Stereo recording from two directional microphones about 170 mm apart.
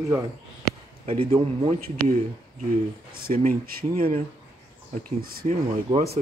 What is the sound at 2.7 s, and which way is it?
Speech, 60° right (ahead or behind).